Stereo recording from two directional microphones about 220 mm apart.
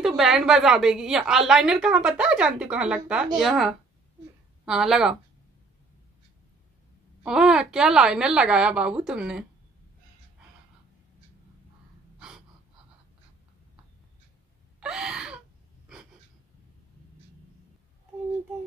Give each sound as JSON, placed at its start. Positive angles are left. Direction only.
{"t": 0.0, "sound": "a woman's voice", "side_deg": 0}
{"t": 7.2, "sound": "a woman's voice", "side_deg": -5}
{"t": 12.2, "sound": "gasp", "side_deg": -5}
{"t": 14.8, "sound": "gasp", "side_deg": -5}